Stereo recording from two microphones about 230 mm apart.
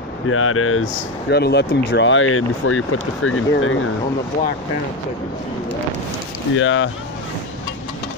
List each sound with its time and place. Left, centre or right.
0.3 s speech: left
1.3 s speech: left
6.5 s speech: left